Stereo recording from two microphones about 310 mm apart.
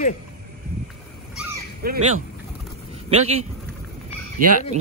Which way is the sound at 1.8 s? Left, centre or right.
Right.